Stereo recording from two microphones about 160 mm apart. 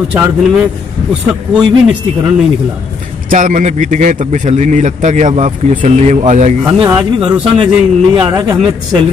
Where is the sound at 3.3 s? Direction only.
55° right (ahead or behind).